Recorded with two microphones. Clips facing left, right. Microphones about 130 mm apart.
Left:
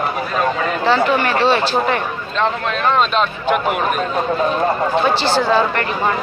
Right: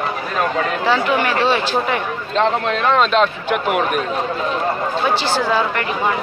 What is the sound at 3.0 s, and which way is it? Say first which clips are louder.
Speech: right 2 dB; 80° right.